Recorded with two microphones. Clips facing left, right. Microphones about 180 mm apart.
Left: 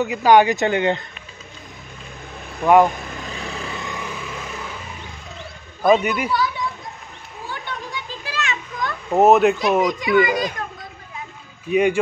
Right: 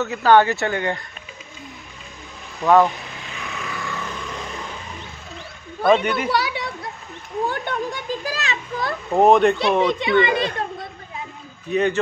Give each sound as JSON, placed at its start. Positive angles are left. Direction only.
{"t": 0.0, "sound": "speech", "side_deg": 15}
{"t": 2.6, "sound": "speech", "side_deg": 15}
{"t": 3.2, "sound": "vehicle", "side_deg": 35}
{"t": 3.8, "sound": "vehicle", "side_deg": 10}
{"t": 5.9, "sound": "speech", "side_deg": 10}
{"t": 6.3, "sound": "children playing", "side_deg": -75}
{"t": 7.4, "sound": "children playing", "side_deg": -50}
{"t": 9.1, "sound": "a child's voice", "side_deg": 5}
{"t": 9.8, "sound": "a child's voice", "side_deg": -25}
{"t": 11.7, "sound": "speech", "side_deg": 10}